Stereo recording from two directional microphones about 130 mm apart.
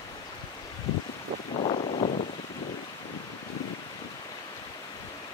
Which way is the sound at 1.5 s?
60° left (ahead or behind).